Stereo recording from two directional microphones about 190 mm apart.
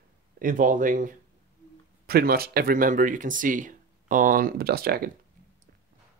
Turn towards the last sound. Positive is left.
turn(degrees=-55)  # may be behind; listen again after turning